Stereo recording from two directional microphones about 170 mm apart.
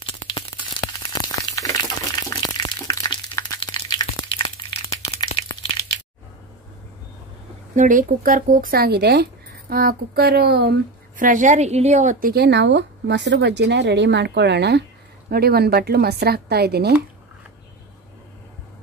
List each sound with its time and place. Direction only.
0.0 s a sound: 30° left (ahead or behind)
7.7 s speech: 50° right (ahead or behind); by 10.8 s 75° right (ahead or behind)
11.1 s a woman's voice: 50° right (ahead or behind); by 16.9 s 70° right (ahead or behind)